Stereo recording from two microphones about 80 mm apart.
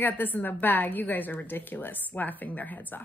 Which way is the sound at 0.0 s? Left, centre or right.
Left.